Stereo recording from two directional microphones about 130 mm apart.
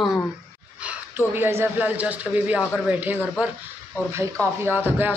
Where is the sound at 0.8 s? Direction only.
15° right (ahead or behind).